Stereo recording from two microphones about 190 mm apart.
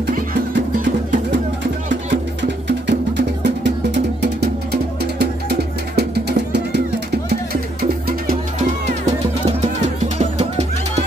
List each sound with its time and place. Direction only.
0.5 s music: 65° right (ahead or behind)
2.9 s music: 65° right (ahead or behind)
8.3 s music: 35° right (ahead or behind)